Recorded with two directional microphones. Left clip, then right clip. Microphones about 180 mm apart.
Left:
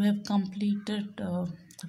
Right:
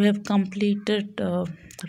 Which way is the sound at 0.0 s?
25° right (ahead or behind).